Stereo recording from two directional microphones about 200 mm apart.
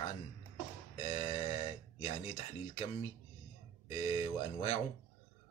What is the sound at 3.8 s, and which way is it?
Speech, 30° left (ahead or behind).